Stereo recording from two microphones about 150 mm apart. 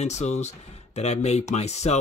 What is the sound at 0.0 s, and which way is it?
Speech, 50° left (ahead or behind).